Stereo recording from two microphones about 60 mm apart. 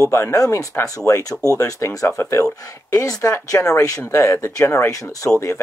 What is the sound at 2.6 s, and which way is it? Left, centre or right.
Speech, left.